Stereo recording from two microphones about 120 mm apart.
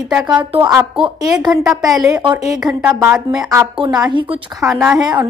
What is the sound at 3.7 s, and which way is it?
Speech, 40° right (ahead or behind).